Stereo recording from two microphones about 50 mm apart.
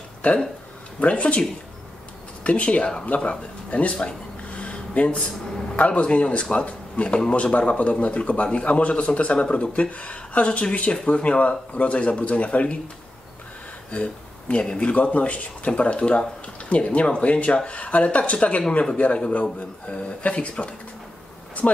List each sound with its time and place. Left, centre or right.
0.2 s a man's voice: left
2.4 s a man's voice: left
4.6 s a sound: left
5.8 s a man's voice: left
13.9 s a man's voice: centre
19.9 s a man's voice: left